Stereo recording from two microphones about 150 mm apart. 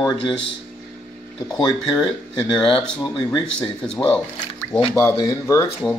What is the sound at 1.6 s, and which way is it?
A man's voice, 30° left (ahead or behind).